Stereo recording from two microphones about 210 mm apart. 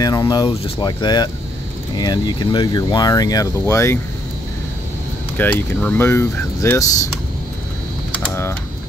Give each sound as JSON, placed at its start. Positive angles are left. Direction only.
{"t": 0.0, "sound": "speech", "side_deg": 20}
{"t": 5.4, "sound": "speech", "side_deg": 10}